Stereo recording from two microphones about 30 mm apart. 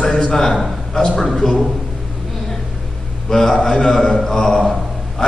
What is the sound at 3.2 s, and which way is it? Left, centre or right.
A man's voice, centre.